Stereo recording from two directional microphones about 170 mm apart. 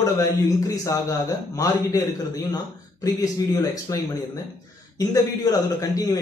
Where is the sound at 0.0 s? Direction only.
20° left (ahead or behind).